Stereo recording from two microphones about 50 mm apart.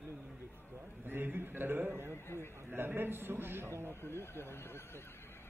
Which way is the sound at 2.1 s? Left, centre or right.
Left.